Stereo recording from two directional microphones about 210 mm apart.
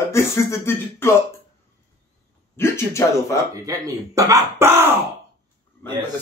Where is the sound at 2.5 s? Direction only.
10° left (ahead or behind).